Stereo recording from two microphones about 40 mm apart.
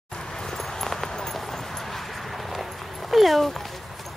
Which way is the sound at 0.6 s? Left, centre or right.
Centre.